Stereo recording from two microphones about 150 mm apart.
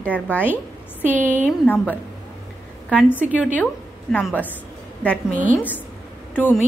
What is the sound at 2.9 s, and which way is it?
A woman's voice, 10° left (ahead or behind).